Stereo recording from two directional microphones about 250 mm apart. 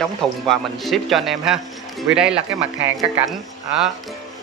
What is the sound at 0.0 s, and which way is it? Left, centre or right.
Speech, centre.